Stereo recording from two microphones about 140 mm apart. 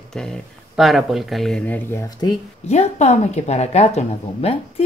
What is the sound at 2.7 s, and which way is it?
A woman's voice, 50° left (ahead or behind).